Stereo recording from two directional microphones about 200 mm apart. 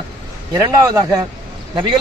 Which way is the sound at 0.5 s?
15° right (ahead or behind).